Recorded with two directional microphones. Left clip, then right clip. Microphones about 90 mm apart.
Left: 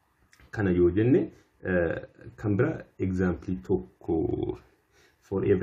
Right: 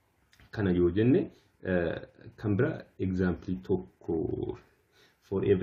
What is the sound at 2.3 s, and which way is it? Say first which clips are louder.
Speech: left 3 dB; 10° left (ahead or behind).